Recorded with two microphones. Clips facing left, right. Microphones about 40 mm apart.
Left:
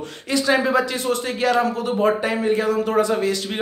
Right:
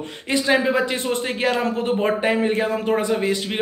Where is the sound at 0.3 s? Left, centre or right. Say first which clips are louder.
Even; right.